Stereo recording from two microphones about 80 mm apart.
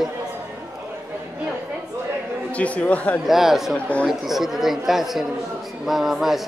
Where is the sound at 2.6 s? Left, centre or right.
Centre.